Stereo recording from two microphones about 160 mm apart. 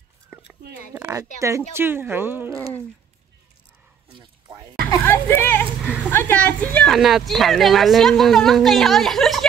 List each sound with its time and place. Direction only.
0.9 s speech: 15° right (ahead or behind)
4.9 s speech: 15° left (ahead or behind)
6.9 s speech: centre (ahead or behind)